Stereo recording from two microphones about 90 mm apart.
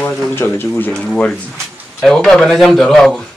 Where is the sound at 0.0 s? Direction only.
20° left (ahead or behind).